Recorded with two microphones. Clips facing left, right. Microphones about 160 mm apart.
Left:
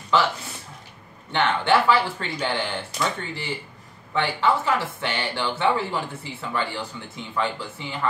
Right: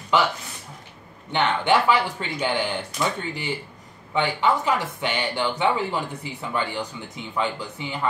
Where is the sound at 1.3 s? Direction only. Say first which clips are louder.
Even; 15° right (ahead or behind).